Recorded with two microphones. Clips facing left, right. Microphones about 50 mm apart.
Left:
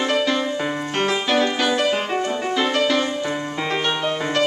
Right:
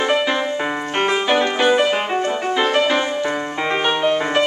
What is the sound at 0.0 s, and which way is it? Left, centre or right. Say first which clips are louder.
Music: right 2 dB; centre.